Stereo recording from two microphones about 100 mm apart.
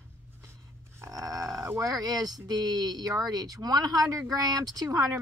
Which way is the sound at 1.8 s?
40° right (ahead or behind).